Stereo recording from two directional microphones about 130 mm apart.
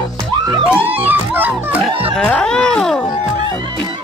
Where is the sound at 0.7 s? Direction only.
15° right (ahead or behind).